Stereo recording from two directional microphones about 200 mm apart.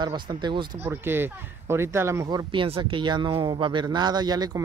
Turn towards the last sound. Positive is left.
turn(degrees=-20)  # may be behind; listen again after turning